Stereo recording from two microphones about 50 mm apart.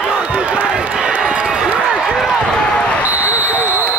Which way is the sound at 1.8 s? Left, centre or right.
Centre.